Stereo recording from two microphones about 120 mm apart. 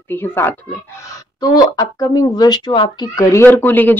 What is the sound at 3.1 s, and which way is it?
Speech, 20° left (ahead or behind).